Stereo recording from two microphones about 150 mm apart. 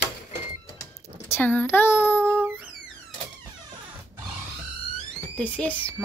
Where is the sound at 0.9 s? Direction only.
15° left (ahead or behind).